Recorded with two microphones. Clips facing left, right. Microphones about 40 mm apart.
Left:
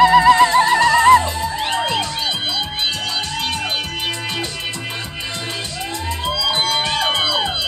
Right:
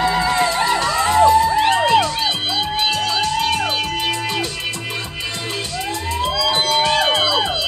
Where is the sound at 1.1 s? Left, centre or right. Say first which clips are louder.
Right 6 dB; right.